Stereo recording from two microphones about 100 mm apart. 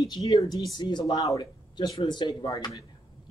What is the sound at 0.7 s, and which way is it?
Speech, 50° left (ahead or behind).